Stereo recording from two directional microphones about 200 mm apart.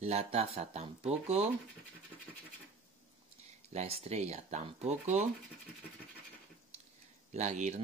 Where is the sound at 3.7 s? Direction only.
30° right (ahead or behind).